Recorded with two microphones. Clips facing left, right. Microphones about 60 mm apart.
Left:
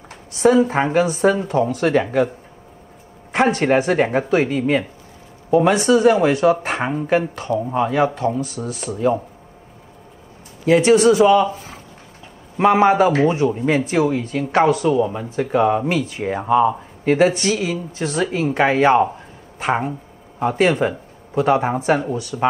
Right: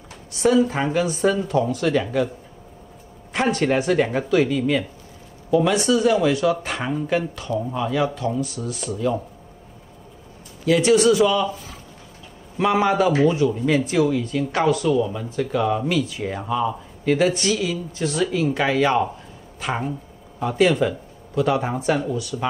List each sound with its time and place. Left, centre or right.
0.4 s speech: left
3.3 s speech: left
10.6 s speech: left